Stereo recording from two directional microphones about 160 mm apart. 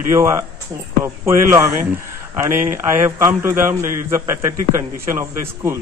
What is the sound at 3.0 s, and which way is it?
Speech, 15° right (ahead or behind).